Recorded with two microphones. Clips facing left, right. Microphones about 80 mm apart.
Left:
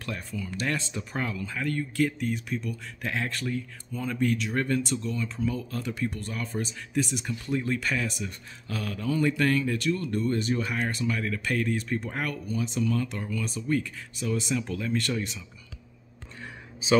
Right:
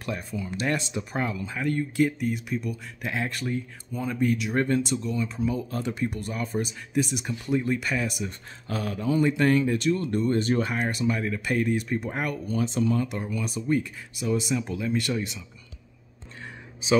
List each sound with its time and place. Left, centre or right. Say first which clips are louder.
0.0 s speech: right 3 dB; centre
4.6 s speech: right 3 dB; right
4.9 s speech: right 3 dB; centre
5.7 s speech: right 2 dB; right
8.3 s speech: right 3 dB; right
10.4 s speech: right 4 dB; right
10.9 s speech: right 3 dB; centre
12.4 s speech: right 4 dB; right
12.9 s speech: right 2 dB; centre